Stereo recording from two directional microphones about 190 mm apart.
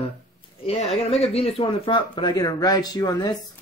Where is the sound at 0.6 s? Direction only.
30° left (ahead or behind).